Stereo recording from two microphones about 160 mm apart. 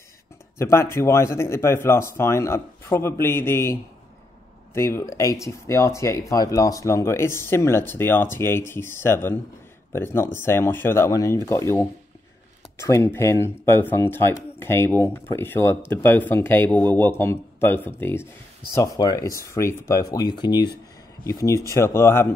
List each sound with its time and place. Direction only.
0.6 s speech: 15° left (ahead or behind)
4.7 s speech: 15° left (ahead or behind)